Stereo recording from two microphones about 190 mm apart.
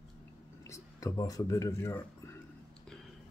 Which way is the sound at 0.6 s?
15° left (ahead or behind).